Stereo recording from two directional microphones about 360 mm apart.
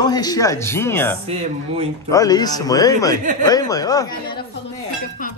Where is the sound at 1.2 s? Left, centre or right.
Centre.